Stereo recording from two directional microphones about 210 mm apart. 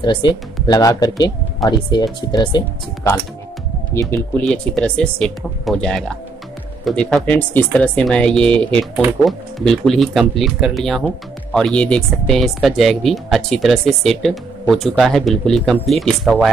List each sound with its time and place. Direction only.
0.0 s speech: 20° left (ahead or behind); by 16.4 s centre (ahead or behind)